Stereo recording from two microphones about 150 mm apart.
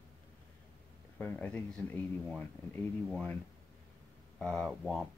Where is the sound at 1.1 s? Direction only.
10° left (ahead or behind).